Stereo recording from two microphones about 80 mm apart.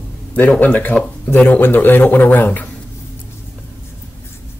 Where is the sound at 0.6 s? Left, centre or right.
Left.